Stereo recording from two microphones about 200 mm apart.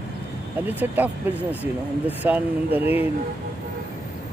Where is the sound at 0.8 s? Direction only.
10° right (ahead or behind).